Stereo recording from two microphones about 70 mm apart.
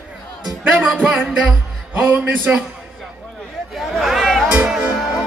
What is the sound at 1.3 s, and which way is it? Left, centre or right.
Speech, right.